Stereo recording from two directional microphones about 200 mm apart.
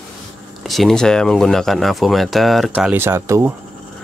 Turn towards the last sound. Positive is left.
turn(degrees=-15)  # may be behind; listen again after turning